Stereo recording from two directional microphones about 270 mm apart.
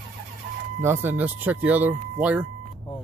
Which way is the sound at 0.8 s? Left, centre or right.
Centre.